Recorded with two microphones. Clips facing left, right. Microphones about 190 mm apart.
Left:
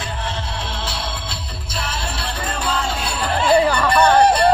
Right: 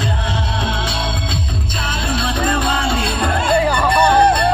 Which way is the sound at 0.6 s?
60° right (ahead or behind).